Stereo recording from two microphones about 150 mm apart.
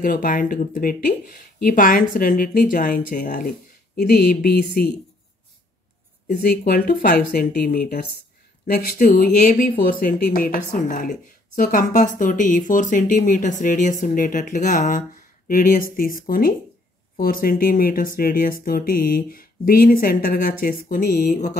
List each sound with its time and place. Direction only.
0.0 s speech: 70° left (ahead or behind); by 4.9 s 90° left
6.2 s speech: 85° left
8.6 s speech: 70° left (ahead or behind)